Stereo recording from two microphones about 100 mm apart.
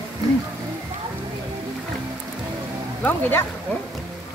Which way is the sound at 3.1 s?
20° left (ahead or behind).